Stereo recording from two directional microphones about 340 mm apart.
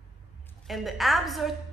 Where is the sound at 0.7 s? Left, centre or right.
Centre.